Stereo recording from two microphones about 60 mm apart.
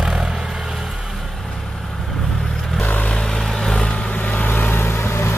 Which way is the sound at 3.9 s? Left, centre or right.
Left.